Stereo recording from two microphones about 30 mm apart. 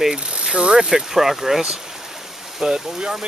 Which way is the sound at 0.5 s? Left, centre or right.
Right.